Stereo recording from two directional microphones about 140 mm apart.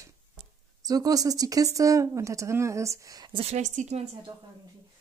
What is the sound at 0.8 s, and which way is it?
Speech, 25° right (ahead or behind).